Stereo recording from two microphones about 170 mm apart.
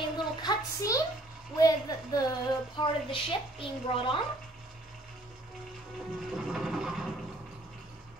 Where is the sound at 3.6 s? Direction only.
30° left (ahead or behind).